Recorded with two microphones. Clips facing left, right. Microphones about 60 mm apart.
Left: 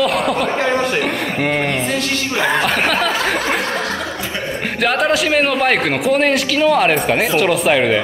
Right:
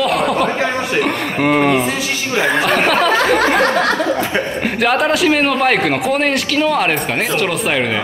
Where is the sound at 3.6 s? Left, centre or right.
Right.